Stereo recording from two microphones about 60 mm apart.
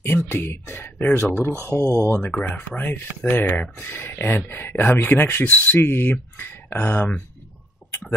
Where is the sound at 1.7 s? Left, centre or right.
Left.